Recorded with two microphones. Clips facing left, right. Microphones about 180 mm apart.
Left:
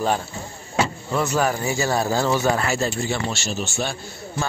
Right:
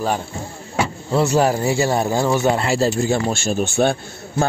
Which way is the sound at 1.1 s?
30° right (ahead or behind).